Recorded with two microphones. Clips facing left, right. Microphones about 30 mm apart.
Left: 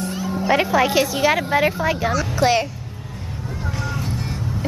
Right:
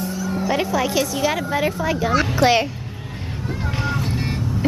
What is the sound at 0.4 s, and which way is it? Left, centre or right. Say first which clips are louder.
A woman's voice: left 4 dB; centre.